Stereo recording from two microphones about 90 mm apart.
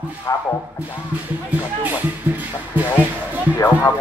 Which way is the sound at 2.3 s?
20° right (ahead or behind).